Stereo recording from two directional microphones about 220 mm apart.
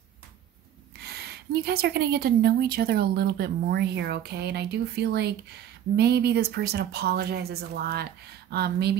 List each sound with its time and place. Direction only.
1.0 s a woman's voice: 45° right (ahead or behind)